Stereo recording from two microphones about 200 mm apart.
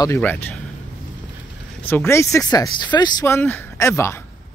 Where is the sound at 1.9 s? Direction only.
10° left (ahead or behind).